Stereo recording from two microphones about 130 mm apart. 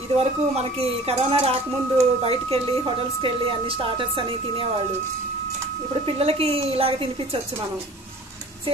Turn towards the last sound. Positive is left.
turn(degrees=-45)  # may be behind; listen again after turning